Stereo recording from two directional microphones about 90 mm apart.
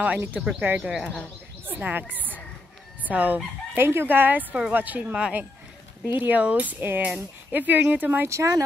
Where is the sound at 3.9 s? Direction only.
25° right (ahead or behind).